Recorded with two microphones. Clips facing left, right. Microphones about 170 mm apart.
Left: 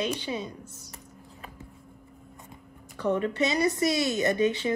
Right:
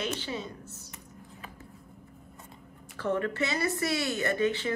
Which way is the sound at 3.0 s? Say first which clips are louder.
Left 3 dB; 20° left (ahead or behind).